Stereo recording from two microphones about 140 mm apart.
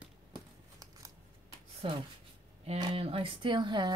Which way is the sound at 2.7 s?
40° right (ahead or behind).